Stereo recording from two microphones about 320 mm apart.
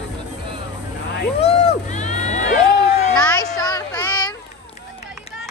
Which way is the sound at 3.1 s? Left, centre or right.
Centre.